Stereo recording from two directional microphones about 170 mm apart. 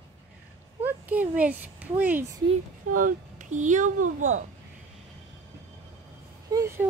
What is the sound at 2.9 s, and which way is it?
Speech, 50° right (ahead or behind).